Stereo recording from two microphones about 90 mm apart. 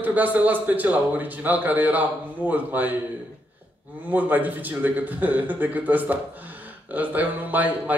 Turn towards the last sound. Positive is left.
turn(degrees=-20)  # may be behind; listen again after turning